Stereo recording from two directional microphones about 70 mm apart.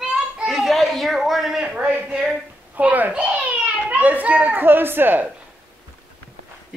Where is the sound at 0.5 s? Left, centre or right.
Centre.